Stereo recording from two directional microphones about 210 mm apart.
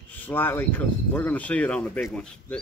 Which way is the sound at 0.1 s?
10° left (ahead or behind).